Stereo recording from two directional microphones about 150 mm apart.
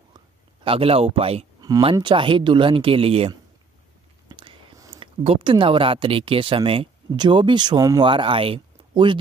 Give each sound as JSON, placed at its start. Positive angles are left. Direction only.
{"t": 0.7, "sound": "speech", "side_deg": -40}
{"t": 4.3, "sound": "whispering", "side_deg": -35}
{"t": 4.7, "sound": "a sound", "side_deg": -25}
{"t": 5.0, "sound": "speech", "side_deg": -40}